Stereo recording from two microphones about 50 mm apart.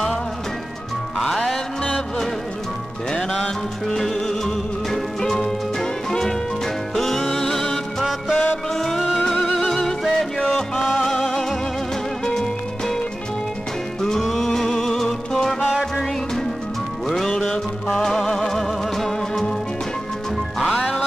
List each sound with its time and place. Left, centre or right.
1.1 s music: centre
1.8 s music: centre
14.2 s music: centre
20.5 s music: centre